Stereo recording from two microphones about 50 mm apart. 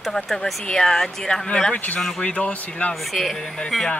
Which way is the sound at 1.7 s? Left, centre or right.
Left.